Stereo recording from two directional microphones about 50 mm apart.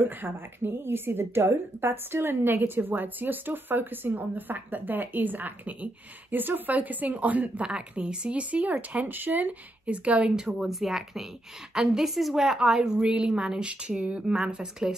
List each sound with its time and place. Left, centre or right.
0.0 s a woman's voice: right
7.6 s a woman's voice: centre; by 9.6 s right
9.8 s a woman's voice: right